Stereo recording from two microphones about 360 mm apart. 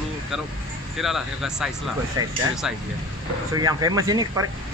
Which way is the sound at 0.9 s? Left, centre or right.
Centre.